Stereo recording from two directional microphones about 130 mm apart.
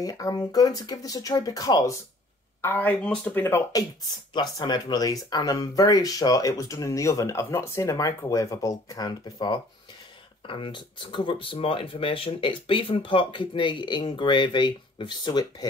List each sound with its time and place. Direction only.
0.0 s speech: 30° left (ahead or behind)
2.6 s speech: 15° left (ahead or behind)
4.3 s speech: 30° left (ahead or behind)